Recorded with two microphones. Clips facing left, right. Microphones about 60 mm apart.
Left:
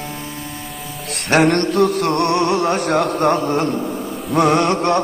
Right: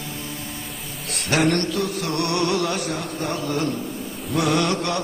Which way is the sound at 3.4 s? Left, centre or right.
Left.